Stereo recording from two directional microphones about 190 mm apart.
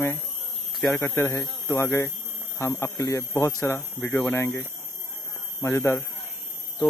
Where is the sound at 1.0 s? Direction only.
10° left (ahead or behind).